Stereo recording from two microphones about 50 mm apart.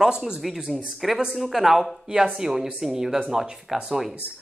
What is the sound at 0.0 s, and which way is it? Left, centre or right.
A man's voice, centre.